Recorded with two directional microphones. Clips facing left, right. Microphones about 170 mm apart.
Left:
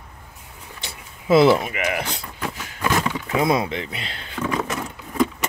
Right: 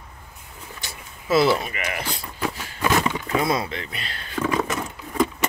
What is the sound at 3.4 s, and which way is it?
Speech, 20° left (ahead or behind).